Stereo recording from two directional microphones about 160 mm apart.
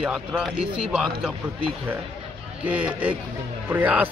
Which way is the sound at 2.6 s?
10° right (ahead or behind).